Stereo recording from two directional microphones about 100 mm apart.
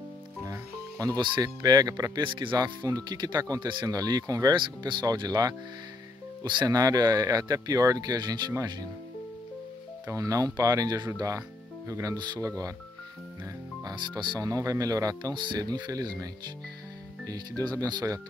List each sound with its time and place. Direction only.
0.5 s music: 40° right (ahead or behind)
1.6 s speech: 40° right (ahead or behind)
2.2 s speech: 55° right (ahead or behind)
10.1 s speech: 35° right (ahead or behind)
13.8 s speech: 45° right (ahead or behind)
14.5 s speech: 35° right (ahead or behind)
15.3 s speech: 50° right (ahead or behind)
17.3 s speech: 35° right (ahead or behind)